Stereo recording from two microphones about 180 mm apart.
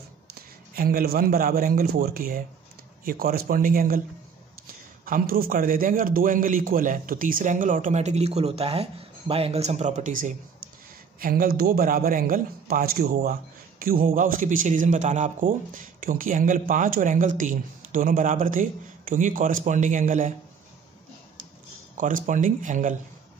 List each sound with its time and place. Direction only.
0.3 s a man's voice: 55° right (ahead or behind)
5.0 s a man's voice: 50° right (ahead or behind)
21.9 s a man's voice: 45° right (ahead or behind)